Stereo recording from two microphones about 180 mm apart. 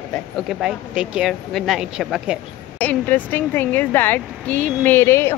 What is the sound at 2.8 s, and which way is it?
Speech, 10° left (ahead or behind).